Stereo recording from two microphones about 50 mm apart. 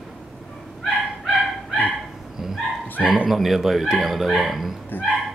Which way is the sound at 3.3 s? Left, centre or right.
Centre.